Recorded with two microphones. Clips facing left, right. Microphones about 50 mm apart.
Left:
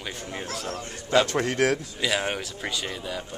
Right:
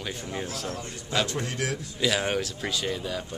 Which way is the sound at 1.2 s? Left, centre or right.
Left.